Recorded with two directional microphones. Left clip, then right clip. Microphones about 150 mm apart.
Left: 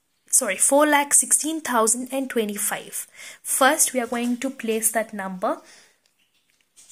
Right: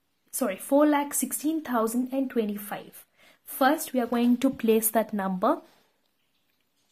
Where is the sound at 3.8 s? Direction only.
15° right (ahead or behind).